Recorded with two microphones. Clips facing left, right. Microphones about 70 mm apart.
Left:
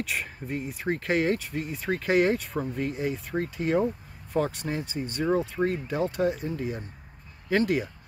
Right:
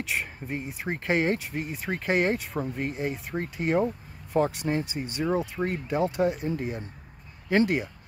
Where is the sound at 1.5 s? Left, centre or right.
Right.